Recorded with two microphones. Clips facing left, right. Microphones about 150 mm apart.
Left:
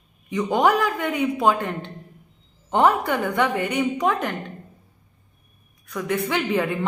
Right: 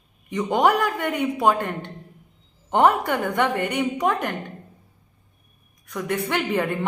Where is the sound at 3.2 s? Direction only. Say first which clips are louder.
Even; 10° left (ahead or behind).